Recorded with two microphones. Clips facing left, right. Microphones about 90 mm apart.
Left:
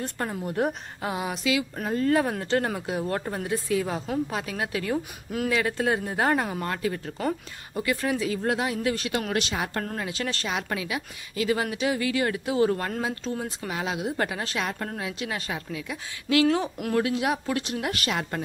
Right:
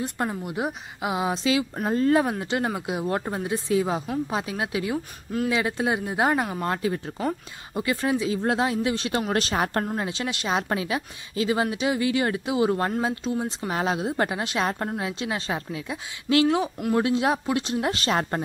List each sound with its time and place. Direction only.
0.0 s speech: 10° right (ahead or behind)
1.1 s speech: 25° right (ahead or behind)
4.9 s speech: centre (ahead or behind)
5.5 s speech: 20° right (ahead or behind)
9.3 s speech: 40° right (ahead or behind)
9.8 s speech: 25° right (ahead or behind)
10.5 s speech: 30° right (ahead or behind); by 13.5 s 15° right (ahead or behind)
13.7 s speech: 35° right (ahead or behind)
14.6 s speech: 30° right (ahead or behind)
16.4 s speech: 15° right (ahead or behind)
16.9 s speech: 25° right (ahead or behind)